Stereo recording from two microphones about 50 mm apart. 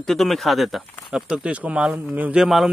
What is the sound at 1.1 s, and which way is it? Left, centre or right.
Speech, centre.